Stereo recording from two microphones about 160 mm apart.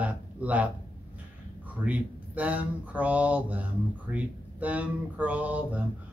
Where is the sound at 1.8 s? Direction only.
10° right (ahead or behind).